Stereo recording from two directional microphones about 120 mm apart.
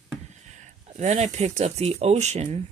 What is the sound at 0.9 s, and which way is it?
Speech, 75° right (ahead or behind).